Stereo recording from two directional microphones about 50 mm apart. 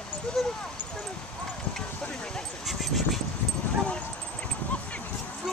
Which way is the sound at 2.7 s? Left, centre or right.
Centre.